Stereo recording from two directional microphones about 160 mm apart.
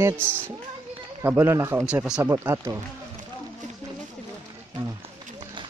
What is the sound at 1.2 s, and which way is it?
Speech, 15° right (ahead or behind).